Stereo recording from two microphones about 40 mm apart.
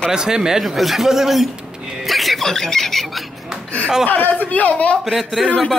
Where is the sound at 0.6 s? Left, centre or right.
Centre.